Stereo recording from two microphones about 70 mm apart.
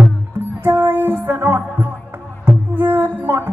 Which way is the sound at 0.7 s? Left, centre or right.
Right.